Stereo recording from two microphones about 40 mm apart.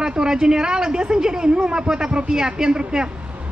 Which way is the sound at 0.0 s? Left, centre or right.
Centre.